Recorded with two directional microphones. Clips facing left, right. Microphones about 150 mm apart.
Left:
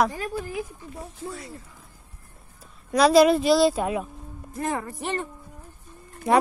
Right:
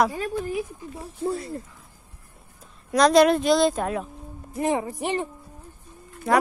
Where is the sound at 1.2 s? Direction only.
35° right (ahead or behind).